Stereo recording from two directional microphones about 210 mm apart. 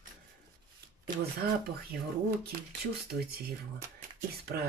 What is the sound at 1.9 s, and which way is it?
Speech, 45° right (ahead or behind).